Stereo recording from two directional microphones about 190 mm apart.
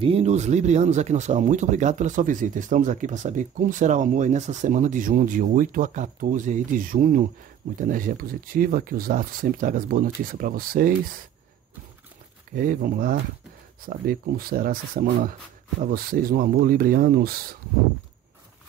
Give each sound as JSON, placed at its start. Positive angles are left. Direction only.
{"t": 0.0, "sound": "speech", "side_deg": -30}
{"t": 12.5, "sound": "speech", "side_deg": -45}